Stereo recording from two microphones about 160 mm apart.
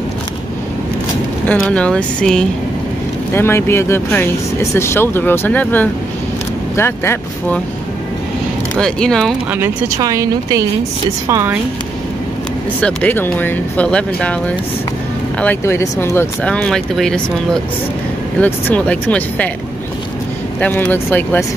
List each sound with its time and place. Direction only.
1.5 s speech: 5° left (ahead or behind)
8.7 s speech: 5° left (ahead or behind)
9.5 s speech: 15° right (ahead or behind)
12.8 s speech: 10° left (ahead or behind)
18.4 s speech: 10° left (ahead or behind)
20.6 s speech: 10° left (ahead or behind)